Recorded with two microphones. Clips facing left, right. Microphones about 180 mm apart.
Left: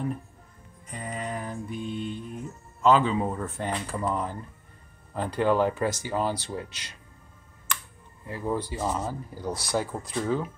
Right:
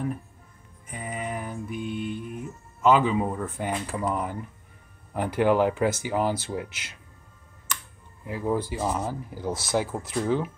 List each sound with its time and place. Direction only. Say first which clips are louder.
0.8 s music: right 1 dB; 5° right (ahead or behind)
1.8 s speech: right 3 dB; 5° right (ahead or behind)
8.3 s speech: right 3 dB; 10° right (ahead or behind)
9.5 s speech: right 2 dB; 20° right (ahead or behind)
10.1 s speech: right 2 dB; centre (ahead or behind)